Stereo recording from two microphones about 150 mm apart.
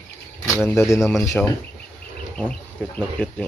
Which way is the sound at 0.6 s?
15° left (ahead or behind).